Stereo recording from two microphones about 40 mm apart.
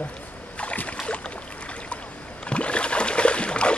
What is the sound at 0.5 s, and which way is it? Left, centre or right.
Rowboat, left.